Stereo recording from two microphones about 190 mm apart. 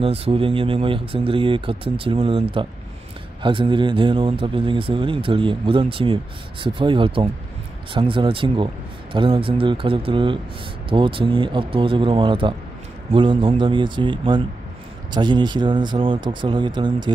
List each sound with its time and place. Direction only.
0.0 s speech: 30° right (ahead or behind)